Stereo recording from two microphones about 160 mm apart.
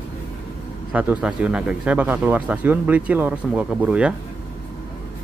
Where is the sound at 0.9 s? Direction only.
5° right (ahead or behind).